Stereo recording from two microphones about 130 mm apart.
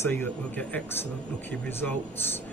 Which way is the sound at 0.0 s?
20° left (ahead or behind).